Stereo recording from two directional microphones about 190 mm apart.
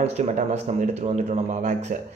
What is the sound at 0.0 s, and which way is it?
Speech, 35° right (ahead or behind).